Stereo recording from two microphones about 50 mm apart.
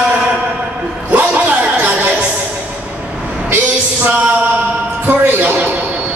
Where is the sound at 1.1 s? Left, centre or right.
Right.